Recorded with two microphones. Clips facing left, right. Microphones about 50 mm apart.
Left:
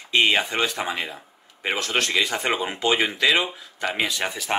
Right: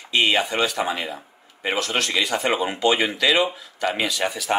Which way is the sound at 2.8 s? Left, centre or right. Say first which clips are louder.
Right 1 dB; centre.